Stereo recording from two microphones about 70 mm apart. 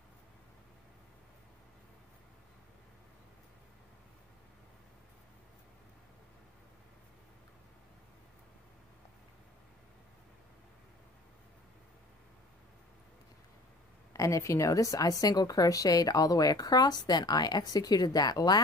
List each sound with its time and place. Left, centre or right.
14.1 s a woman's voice: left